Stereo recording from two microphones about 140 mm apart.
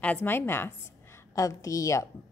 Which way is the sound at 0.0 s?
10° left (ahead or behind).